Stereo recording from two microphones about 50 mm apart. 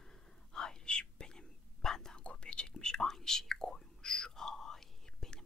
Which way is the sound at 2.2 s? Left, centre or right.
Left.